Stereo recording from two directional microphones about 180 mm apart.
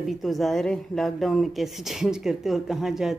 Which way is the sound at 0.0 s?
Centre (ahead or behind).